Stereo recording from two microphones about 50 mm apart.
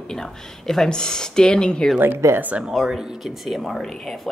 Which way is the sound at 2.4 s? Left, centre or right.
Right.